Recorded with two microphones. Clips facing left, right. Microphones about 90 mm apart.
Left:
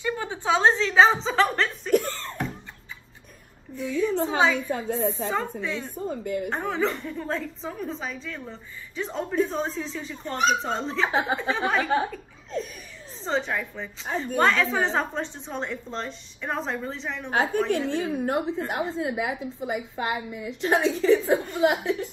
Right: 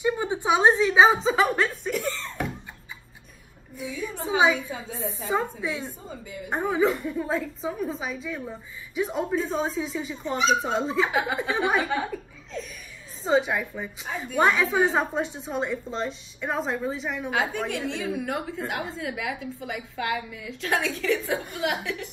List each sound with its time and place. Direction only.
0.0 s chuckle: 15° right (ahead or behind)
2.0 s a sound: 45° left (ahead or behind)
4.6 s a woman's voice: 55° left (ahead or behind)
5.6 s a woman's voice: 10° right (ahead or behind)
5.9 s a woman's voice: 55° left (ahead or behind)
6.5 s a woman's voice: 10° right (ahead or behind)
11.1 s speech: 30° left (ahead or behind)
11.3 s a woman's voice: 15° right (ahead or behind)
12.5 s a woman's voice: 45° left (ahead or behind)
13.2 s a woman's voice: 10° right (ahead or behind)
14.1 s speech: 35° left (ahead or behind)
14.4 s a woman's voice: 10° right (ahead or behind)
17.3 s a woman's voice: 45° left (ahead or behind); by 22.1 s 25° left (ahead or behind)